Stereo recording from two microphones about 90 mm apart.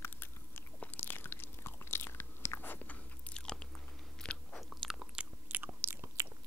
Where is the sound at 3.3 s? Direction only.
5° left (ahead or behind).